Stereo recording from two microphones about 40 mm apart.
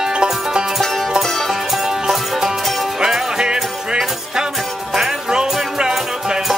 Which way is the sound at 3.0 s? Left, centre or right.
Centre.